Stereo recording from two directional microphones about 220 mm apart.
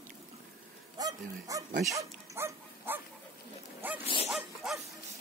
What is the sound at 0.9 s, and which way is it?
Speech, 15° right (ahead or behind).